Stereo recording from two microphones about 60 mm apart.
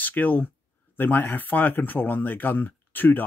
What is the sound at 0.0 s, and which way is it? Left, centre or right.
Speech, left.